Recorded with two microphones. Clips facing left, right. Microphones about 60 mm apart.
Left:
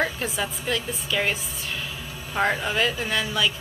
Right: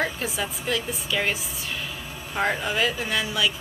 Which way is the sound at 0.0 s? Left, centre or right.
Centre.